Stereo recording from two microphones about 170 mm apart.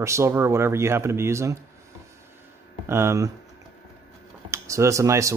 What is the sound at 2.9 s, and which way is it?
Speech, 15° right (ahead or behind).